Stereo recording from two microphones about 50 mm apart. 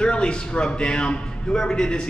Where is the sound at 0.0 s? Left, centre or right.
Centre.